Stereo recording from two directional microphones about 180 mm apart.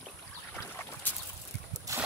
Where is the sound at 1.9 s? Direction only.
20° right (ahead or behind).